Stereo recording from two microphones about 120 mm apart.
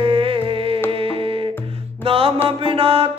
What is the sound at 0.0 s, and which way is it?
Music, 50° right (ahead or behind).